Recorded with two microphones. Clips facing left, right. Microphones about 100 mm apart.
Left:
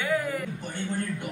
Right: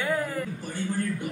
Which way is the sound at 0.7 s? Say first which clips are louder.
Right 2 dB; 20° left (ahead or behind).